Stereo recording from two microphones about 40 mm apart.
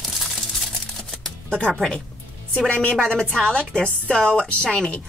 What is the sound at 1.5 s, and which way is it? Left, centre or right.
Speech, left.